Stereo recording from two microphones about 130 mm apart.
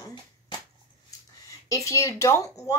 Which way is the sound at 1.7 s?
25° left (ahead or behind).